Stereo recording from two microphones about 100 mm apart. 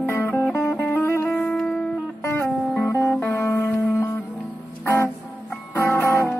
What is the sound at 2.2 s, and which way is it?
Music, 20° left (ahead or behind).